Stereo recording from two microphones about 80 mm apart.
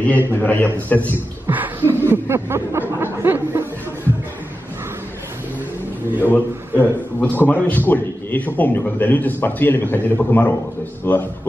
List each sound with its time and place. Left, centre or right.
0.0 s a man's voice: left
1.5 s snicker: right
3.0 s speech: right
6.2 s a man's voice: left